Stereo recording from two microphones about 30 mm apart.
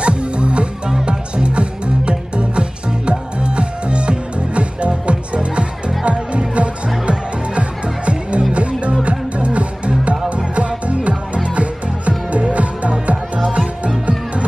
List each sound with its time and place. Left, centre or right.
0.0 s music: right